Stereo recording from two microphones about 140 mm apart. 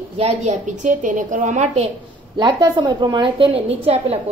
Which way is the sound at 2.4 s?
35° right (ahead or behind).